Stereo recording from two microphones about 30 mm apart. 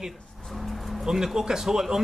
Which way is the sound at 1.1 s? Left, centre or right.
Centre.